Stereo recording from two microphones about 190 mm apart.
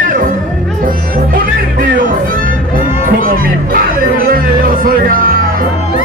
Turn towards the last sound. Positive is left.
turn(degrees=-50)  # may be behind; listen again after turning